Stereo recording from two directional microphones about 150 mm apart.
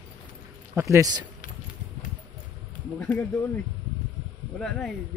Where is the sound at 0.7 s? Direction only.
20° right (ahead or behind).